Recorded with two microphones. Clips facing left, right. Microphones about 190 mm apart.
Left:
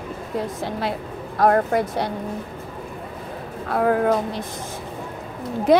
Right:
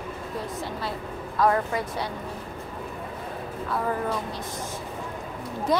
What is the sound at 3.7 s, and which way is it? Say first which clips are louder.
Speech: left 9 dB; 65° left (ahead or behind).